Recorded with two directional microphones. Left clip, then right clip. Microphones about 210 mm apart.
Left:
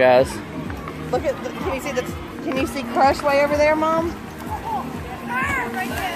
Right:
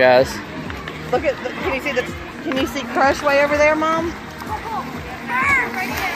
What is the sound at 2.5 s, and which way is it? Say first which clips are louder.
Speech: right 1 dB; 45° right (ahead or behind).